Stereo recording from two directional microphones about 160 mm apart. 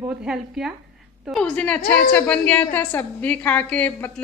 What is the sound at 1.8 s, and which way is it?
Speech, 60° left (ahead or behind).